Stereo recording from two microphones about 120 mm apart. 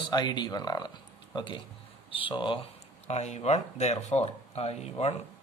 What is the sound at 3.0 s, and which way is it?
Speech, 65° left (ahead or behind).